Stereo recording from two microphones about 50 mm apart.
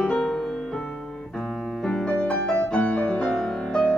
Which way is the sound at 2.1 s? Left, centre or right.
Left.